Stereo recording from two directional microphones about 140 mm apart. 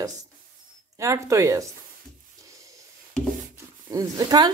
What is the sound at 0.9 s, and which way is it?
Speech, 20° right (ahead or behind).